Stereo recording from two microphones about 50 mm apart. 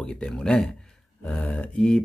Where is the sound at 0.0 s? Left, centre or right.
Centre.